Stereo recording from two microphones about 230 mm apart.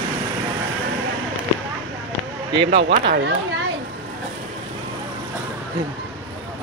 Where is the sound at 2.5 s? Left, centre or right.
Right.